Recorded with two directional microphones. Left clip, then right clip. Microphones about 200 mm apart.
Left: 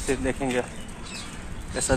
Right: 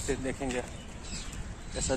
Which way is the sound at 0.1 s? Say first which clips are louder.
Left 7 dB; 15° left (ahead or behind).